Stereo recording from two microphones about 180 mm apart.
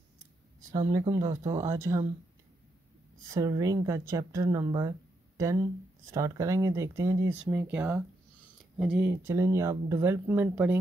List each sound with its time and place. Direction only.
0.7 s speech: 25° right (ahead or behind)
3.3 s speech: 20° right (ahead or behind)